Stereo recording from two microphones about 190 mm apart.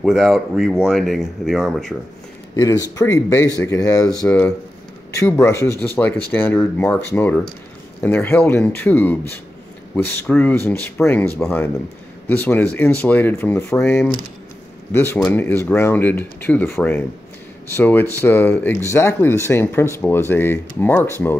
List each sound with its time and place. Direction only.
0.0 s speech: centre (ahead or behind)
2.5 s speech: 20° left (ahead or behind)